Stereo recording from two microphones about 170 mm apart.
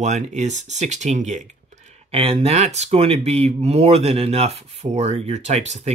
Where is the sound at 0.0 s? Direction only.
40° right (ahead or behind).